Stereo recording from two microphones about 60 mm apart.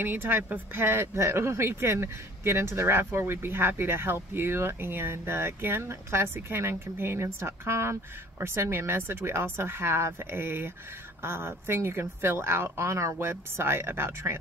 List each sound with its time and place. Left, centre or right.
0.0 s speech: right
1.1 s speech: right